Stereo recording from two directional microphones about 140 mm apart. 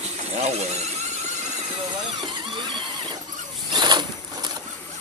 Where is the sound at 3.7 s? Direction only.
30° right (ahead or behind).